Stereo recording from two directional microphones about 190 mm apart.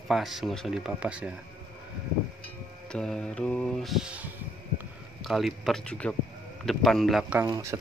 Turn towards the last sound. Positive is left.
turn(degrees=-15)  # may be behind; listen again after turning